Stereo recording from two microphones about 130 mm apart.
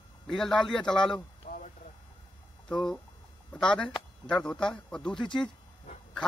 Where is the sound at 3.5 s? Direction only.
5° left (ahead or behind).